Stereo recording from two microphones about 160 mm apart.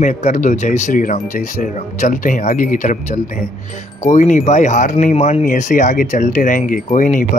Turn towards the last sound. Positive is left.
turn(degrees=55)  # may be behind; listen again after turning